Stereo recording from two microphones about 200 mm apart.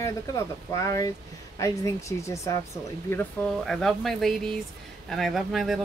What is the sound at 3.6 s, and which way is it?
Speech, centre (ahead or behind).